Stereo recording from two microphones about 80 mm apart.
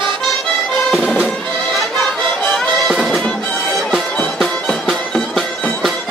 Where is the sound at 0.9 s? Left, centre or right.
Centre.